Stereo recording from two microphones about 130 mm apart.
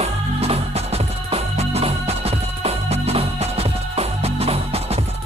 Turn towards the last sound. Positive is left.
turn(degrees=-50)  # may be behind; listen again after turning